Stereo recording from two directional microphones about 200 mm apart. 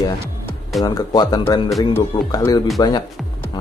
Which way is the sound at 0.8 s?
20° left (ahead or behind).